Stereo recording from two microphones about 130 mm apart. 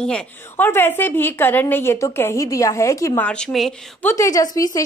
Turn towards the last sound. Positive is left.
turn(degrees=25)  # may be behind; listen again after turning